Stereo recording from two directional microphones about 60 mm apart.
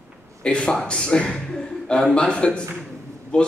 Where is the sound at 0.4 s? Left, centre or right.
Centre.